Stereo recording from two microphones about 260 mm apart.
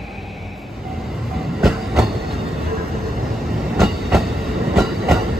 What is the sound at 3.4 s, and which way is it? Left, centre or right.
Train, centre.